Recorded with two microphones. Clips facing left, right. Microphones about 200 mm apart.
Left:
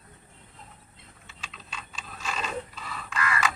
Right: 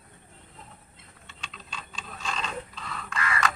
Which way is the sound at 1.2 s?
5° left (ahead or behind).